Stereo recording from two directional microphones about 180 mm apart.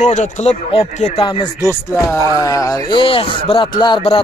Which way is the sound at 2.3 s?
20° left (ahead or behind).